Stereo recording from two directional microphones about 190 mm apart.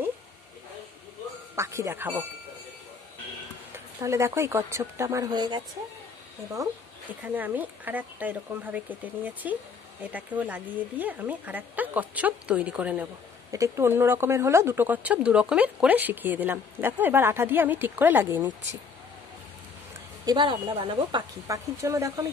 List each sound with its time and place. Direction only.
1.5 s speech: 15° right (ahead or behind)
3.7 s a woman's voice: 15° right (ahead or behind)
20.2 s speech: 25° right (ahead or behind)